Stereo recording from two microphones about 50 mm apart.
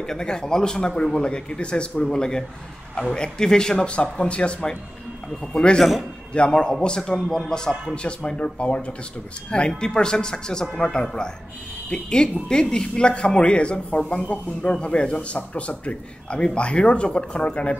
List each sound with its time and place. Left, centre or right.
0.0 s speech: centre